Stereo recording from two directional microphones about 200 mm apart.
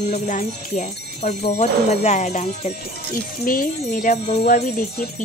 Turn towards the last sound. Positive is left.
turn(degrees=35)  # may be behind; listen again after turning